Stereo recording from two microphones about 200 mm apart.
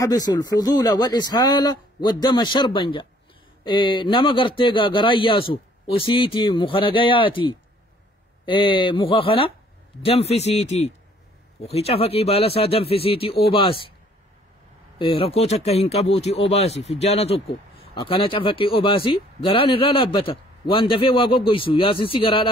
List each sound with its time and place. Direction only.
0.0 s a man's voice: 20° left (ahead or behind)
15.0 s speech: 25° left (ahead or behind)